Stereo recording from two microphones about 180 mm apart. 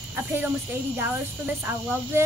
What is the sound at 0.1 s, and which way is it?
Speech, 10° right (ahead or behind).